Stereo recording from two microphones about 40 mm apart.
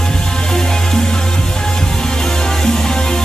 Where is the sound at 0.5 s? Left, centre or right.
Centre.